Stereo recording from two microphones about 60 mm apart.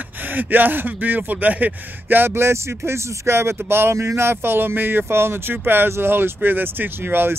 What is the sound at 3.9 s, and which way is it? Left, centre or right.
Speech, right.